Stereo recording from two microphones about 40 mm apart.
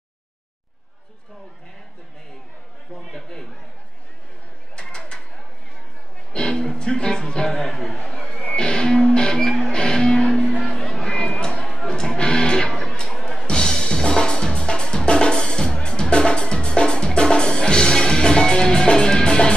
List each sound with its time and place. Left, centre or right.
3.1 s a sound: centre
4.7 s bird: left
6.3 s music: centre
7.6 s a sound: centre
8.3 s music: left
12.9 s chatter: left
13.5 s music: centre